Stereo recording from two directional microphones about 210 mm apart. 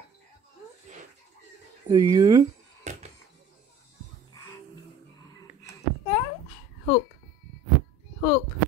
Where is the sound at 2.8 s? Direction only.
35° right (ahead or behind).